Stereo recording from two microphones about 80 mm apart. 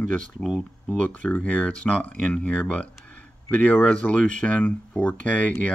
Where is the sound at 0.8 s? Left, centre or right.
Centre.